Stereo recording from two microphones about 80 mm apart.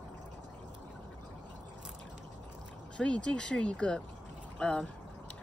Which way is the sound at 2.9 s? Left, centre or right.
Centre.